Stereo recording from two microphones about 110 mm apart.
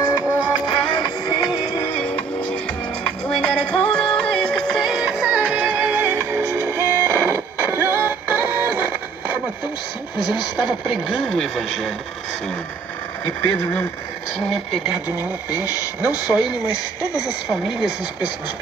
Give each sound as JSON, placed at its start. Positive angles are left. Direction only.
{"t": 0.7, "sound": "music", "side_deg": 45}
{"t": 3.3, "sound": "music", "side_deg": 10}
{"t": 10.1, "sound": "speech", "side_deg": 45}
{"t": 11.1, "sound": "speech", "side_deg": 5}
{"t": 13.2, "sound": "speech", "side_deg": 20}
{"t": 14.5, "sound": "speech", "side_deg": 0}
{"t": 15.0, "sound": "speech", "side_deg": -15}